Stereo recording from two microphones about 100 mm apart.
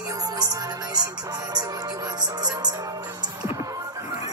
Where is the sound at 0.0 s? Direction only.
35° right (ahead or behind).